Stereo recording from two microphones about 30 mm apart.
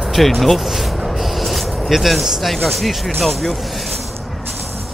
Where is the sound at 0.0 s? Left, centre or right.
Centre.